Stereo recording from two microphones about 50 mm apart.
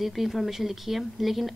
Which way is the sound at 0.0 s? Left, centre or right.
Centre.